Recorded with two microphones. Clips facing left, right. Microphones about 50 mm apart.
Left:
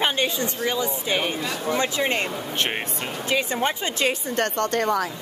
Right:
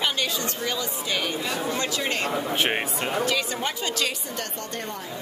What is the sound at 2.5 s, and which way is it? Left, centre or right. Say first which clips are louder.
Speech: right 2 dB; centre.